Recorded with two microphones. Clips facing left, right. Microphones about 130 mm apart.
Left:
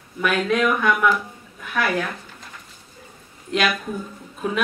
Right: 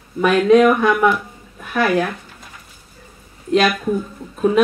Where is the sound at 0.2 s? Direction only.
35° right (ahead or behind).